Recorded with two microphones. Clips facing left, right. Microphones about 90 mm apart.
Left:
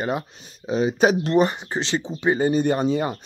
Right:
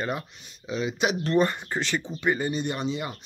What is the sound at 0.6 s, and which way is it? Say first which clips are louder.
Speech: left 8 dB; 35° left (ahead or behind).